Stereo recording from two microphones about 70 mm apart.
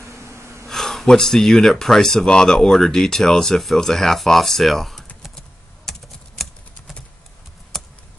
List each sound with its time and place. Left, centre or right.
0.0 s gasp: right
0.7 s speech: centre
5.9 s typing: centre
7.7 s a sound: centre